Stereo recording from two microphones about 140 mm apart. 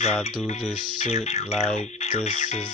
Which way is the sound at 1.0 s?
50° left (ahead or behind).